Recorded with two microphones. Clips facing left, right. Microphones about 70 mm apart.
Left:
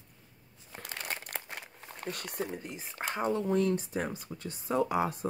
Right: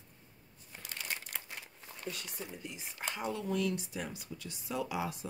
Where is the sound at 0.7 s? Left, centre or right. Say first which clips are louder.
Left 4 dB; left.